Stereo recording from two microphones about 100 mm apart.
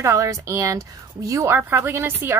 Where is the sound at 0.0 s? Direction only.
30° right (ahead or behind).